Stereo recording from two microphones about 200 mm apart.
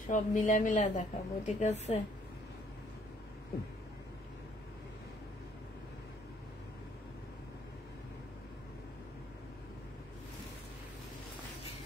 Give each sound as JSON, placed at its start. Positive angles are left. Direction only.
{"t": 0.1, "sound": "a woman's voice", "side_deg": 40}